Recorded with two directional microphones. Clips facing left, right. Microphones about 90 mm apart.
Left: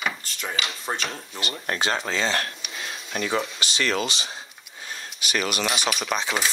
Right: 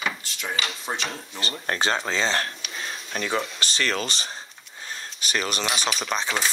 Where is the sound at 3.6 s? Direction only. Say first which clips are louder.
Left 1 dB; 40° right (ahead or behind).